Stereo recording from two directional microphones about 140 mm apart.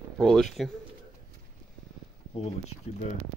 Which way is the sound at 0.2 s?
5° left (ahead or behind).